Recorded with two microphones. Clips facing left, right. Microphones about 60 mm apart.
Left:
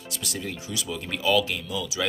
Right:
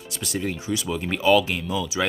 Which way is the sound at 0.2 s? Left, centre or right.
Right.